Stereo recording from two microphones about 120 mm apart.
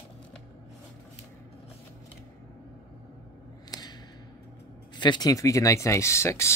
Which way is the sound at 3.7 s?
35° left (ahead or behind).